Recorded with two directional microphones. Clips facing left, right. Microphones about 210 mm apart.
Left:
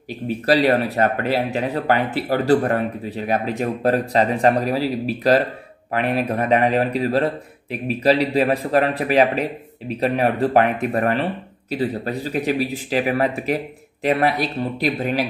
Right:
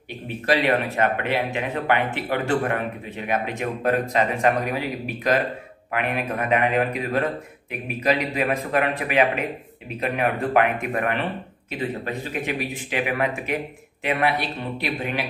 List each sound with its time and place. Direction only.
0.5 s a man's voice: 35° left (ahead or behind)